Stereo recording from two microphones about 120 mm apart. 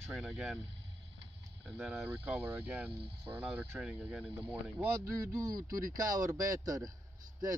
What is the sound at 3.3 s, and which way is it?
Speech, 20° right (ahead or behind).